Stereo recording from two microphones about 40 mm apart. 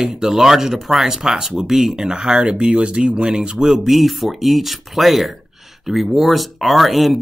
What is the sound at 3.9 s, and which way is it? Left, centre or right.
Speech, centre.